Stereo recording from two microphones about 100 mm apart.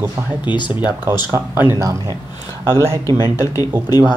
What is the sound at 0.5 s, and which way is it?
Speech, 55° left (ahead or behind).